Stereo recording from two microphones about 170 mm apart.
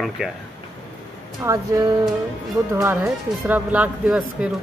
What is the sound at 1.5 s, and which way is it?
Speech, 15° right (ahead or behind).